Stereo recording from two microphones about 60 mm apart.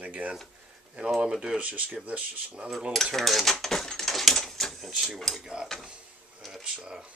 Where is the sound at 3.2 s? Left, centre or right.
Centre.